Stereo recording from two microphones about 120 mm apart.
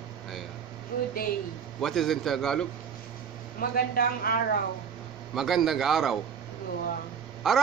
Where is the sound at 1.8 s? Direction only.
Centre (ahead or behind).